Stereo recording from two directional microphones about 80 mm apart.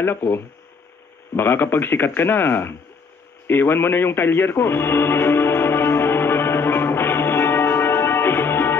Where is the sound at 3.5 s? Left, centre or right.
Left.